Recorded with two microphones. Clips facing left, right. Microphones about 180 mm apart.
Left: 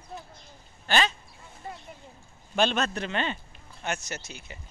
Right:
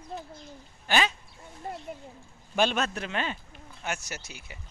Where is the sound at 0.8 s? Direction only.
10° right (ahead or behind).